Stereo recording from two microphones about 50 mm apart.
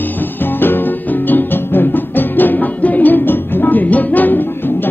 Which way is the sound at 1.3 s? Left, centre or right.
Left.